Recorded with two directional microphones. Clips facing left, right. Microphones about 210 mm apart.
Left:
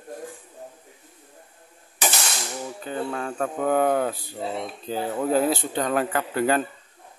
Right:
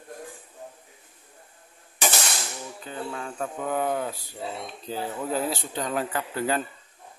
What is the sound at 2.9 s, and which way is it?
Speech, 60° left (ahead or behind).